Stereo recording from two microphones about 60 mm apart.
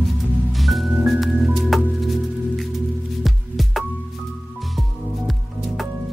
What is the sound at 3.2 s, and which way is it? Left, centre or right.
Music, centre.